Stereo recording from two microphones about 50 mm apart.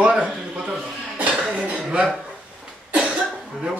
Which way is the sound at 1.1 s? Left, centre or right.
Right.